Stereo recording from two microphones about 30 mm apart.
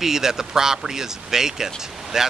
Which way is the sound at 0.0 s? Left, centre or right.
Centre.